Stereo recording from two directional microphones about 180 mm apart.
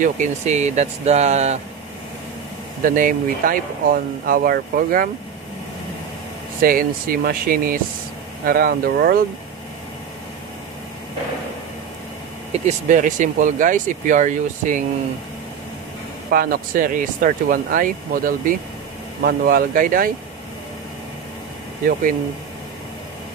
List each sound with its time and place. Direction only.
0.0 s speech: 40° right (ahead or behind)
2.8 s speech: 50° right (ahead or behind)
6.6 s speech: 50° right (ahead or behind)
12.5 s speech: 40° right (ahead or behind)
16.3 s speech: 55° right (ahead or behind)